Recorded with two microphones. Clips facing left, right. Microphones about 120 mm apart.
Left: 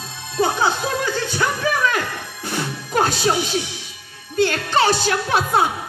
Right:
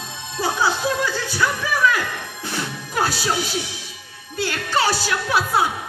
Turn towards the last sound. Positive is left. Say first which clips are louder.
# left 2 dB
turn(degrees=25)  # may be behind; listen again after turning